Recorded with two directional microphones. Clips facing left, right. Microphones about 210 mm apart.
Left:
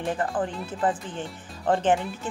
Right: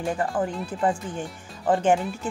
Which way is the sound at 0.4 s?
5° left (ahead or behind).